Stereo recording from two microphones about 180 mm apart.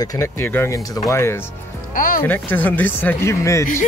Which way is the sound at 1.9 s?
50° left (ahead or behind).